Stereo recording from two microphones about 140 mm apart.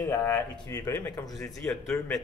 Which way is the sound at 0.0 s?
20° left (ahead or behind).